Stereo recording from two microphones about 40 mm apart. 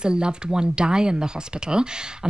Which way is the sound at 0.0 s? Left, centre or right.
Right.